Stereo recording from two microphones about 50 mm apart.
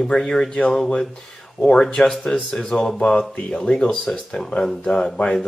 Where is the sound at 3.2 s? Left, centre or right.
Left.